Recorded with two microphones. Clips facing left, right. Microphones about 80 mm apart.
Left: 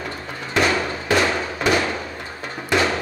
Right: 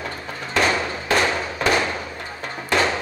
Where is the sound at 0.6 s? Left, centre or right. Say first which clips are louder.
Left 1 dB; right.